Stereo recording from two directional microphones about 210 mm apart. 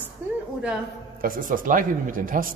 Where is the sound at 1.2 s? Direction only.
40° right (ahead or behind).